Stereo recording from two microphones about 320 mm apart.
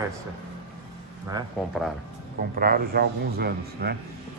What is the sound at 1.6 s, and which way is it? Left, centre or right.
Speech, centre.